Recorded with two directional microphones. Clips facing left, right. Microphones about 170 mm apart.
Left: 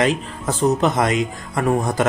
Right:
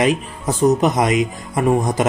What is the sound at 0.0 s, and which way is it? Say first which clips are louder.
Speech: right 2 dB; 15° right (ahead or behind).